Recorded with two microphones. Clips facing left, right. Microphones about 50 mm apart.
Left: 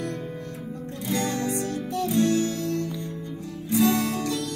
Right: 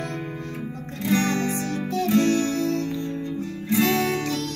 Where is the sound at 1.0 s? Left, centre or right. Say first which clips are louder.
Right 4 dB; right.